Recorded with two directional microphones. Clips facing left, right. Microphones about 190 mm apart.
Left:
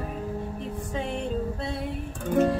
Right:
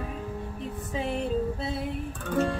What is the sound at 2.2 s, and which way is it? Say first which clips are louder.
Music: left 4 dB; 15° left (ahead or behind).